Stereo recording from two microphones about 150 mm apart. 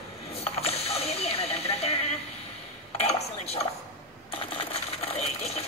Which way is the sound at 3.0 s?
40° left (ahead or behind).